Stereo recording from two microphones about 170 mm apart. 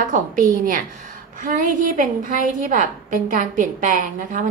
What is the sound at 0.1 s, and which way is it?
A woman's voice, 50° right (ahead or behind).